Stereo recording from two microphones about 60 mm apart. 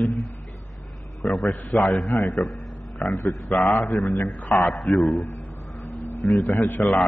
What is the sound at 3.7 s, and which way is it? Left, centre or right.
Speech, left.